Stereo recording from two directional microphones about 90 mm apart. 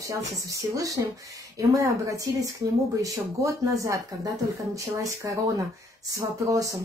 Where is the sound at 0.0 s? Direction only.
35° right (ahead or behind).